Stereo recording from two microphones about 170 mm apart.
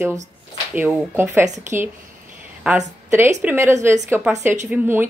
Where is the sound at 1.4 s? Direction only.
45° right (ahead or behind).